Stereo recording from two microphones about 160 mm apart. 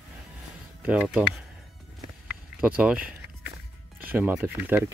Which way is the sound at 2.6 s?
10° right (ahead or behind).